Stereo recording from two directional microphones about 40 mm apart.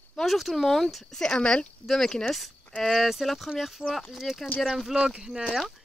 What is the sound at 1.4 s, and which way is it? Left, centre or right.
Speech, left.